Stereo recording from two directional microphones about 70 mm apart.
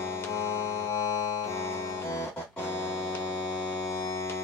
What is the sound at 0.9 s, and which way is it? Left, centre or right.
Music, left.